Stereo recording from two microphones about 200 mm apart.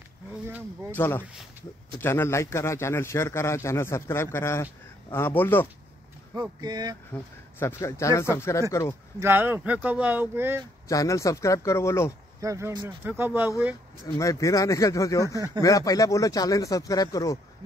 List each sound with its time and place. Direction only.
0.5 s speech: 10° right (ahead or behind)
0.9 s a man's voice: 10° left (ahead or behind)
6.6 s speech: 20° right (ahead or behind)
7.1 s a man's voice: 10° left (ahead or behind)
9.2 s speech: 10° right (ahead or behind)
10.9 s a man's voice: 15° left (ahead or behind)
12.4 s speech: 15° right (ahead or behind)
14.0 s a man's voice: 15° left (ahead or behind)